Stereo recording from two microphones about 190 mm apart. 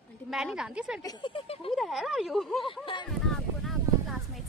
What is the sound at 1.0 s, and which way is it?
Speech, 25° left (ahead or behind).